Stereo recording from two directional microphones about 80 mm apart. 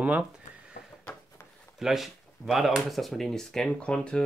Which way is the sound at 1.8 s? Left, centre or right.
Centre.